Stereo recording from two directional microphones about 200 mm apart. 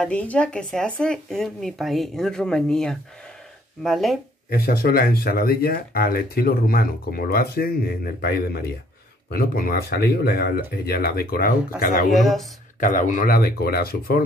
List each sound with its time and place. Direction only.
0.0 s speech: 5° left (ahead or behind)
4.5 s speech: 50° left (ahead or behind)
12.1 s speech: centre (ahead or behind)
12.8 s speech: 40° left (ahead or behind)